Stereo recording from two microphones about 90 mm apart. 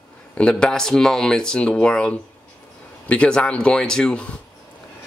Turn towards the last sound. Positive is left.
turn(degrees=15)  # may be behind; listen again after turning